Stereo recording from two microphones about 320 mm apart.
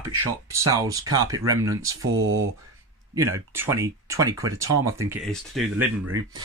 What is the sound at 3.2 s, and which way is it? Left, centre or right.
Speech, centre.